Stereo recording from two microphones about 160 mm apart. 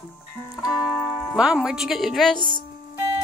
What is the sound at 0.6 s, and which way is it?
Music, centre (ahead or behind).